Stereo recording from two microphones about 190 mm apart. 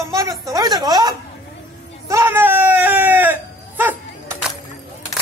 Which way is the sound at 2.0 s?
15° right (ahead or behind).